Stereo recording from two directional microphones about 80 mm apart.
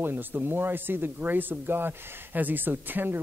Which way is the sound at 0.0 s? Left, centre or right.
Right.